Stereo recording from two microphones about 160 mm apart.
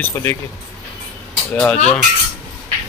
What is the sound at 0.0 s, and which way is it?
Speech, 15° left (ahead or behind).